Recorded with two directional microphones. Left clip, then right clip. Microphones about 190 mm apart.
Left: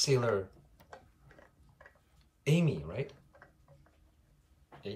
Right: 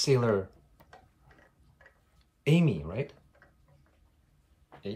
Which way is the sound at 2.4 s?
20° right (ahead or behind).